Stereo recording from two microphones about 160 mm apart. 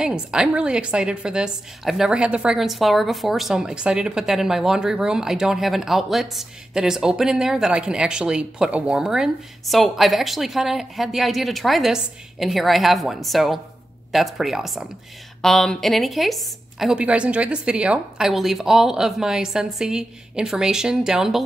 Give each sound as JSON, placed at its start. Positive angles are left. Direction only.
{"t": 0.0, "sound": "a woman's voice", "side_deg": -5}